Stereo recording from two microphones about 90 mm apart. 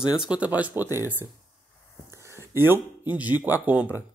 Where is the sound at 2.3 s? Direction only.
25° right (ahead or behind).